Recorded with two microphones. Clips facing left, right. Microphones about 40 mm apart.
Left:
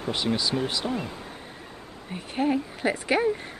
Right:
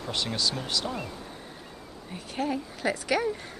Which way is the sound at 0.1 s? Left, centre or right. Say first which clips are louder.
Left 4 dB; centre.